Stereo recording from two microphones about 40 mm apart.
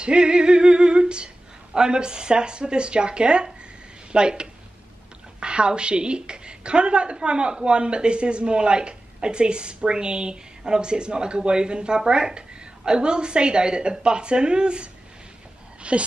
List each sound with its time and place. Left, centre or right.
0.0 s a woman's voice: right